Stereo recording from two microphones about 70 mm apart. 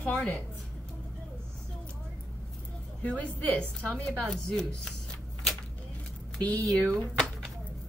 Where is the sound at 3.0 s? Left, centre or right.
Centre.